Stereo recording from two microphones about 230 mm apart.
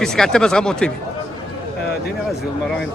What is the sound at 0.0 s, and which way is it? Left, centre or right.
Speech, centre.